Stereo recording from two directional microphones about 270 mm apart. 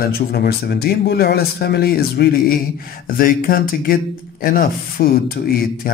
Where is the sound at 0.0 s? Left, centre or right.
Left.